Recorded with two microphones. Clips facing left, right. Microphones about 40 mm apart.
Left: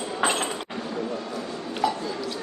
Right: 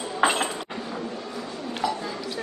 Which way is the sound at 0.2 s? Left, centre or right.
Centre.